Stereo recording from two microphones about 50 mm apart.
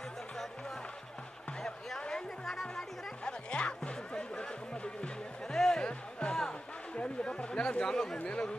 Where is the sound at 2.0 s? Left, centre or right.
Centre.